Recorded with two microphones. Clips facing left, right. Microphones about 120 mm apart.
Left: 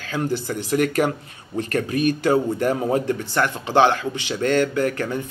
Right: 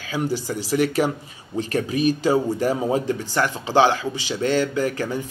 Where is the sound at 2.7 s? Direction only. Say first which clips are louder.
Left 1 dB; 15° right (ahead or behind).